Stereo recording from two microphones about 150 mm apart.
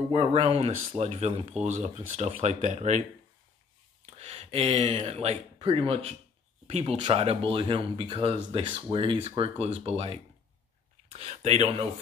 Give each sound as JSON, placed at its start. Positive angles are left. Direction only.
{"t": 0.1, "sound": "speech", "side_deg": -40}
{"t": 4.0, "sound": "speech", "side_deg": -45}